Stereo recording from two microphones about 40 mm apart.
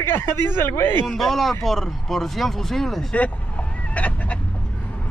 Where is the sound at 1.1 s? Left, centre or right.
Centre.